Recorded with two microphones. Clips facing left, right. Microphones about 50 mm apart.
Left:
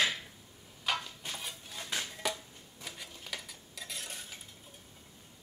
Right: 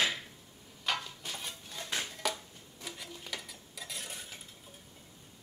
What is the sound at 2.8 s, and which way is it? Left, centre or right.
Cutlery, centre.